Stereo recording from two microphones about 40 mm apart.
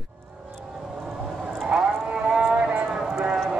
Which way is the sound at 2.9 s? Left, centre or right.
Centre.